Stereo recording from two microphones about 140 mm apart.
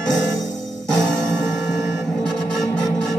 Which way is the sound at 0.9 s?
5° left (ahead or behind).